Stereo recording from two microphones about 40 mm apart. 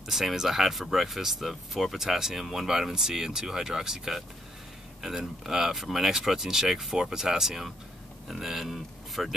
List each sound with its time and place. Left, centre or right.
0.0 s speech: centre